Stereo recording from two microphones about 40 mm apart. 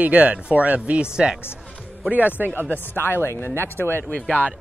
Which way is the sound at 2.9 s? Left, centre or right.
Left.